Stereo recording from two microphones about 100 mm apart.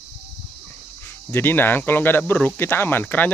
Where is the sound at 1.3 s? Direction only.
20° left (ahead or behind).